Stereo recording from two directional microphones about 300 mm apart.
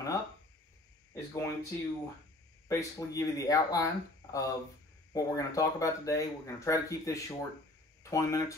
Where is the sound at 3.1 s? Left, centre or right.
Centre.